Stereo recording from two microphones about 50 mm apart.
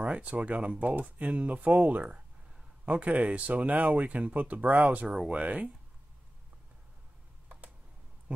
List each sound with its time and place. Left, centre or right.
0.0 s a sound: right
0.3 s speech: right
5.0 s speech: centre
5.3 s speech: right